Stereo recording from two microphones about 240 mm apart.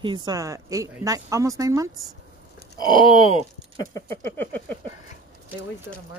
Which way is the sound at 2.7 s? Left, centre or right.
Centre.